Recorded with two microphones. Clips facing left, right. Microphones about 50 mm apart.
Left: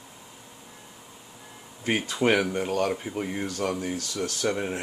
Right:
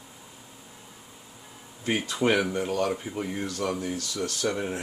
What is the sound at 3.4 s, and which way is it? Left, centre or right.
Speech, left.